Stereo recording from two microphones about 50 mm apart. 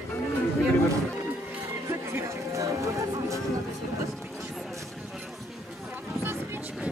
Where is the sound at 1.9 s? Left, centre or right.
Right.